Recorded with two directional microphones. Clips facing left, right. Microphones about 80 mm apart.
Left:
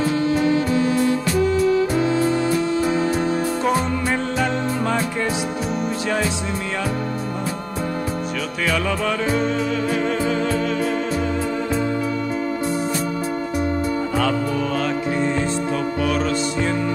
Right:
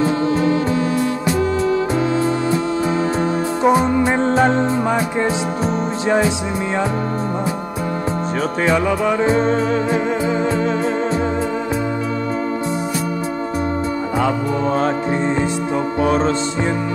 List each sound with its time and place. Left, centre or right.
3.6 s music: right
8.4 s music: right
14.1 s music: centre
16.0 s music: right